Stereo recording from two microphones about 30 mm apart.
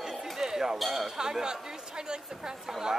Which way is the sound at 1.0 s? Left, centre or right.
Centre.